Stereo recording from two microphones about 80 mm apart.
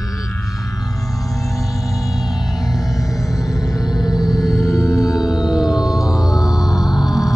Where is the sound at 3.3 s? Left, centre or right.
Left.